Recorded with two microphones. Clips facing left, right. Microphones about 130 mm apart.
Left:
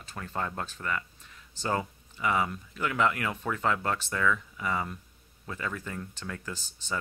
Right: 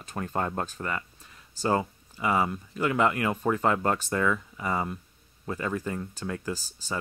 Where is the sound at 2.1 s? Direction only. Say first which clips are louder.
Right 2 dB; 35° right (ahead or behind).